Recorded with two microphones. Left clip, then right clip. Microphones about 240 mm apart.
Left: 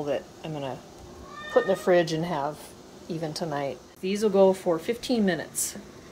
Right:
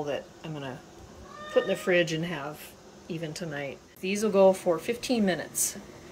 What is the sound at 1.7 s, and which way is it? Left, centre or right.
Speech, left.